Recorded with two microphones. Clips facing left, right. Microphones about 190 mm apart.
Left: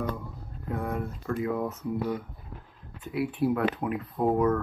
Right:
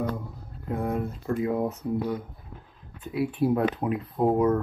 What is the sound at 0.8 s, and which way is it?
Speech, 25° right (ahead or behind).